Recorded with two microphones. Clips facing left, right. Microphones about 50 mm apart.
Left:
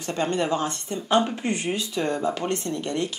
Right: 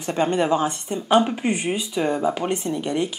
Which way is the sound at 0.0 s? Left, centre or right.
Right.